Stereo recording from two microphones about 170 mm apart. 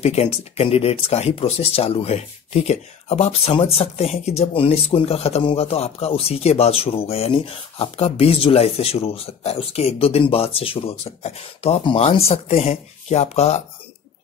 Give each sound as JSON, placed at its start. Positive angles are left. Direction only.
{"t": 0.0, "sound": "speech", "side_deg": 40}